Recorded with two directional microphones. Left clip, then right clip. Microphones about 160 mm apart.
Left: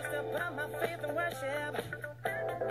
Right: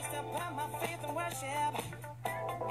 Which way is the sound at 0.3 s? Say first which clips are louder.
Left 2 dB; 40° left (ahead or behind).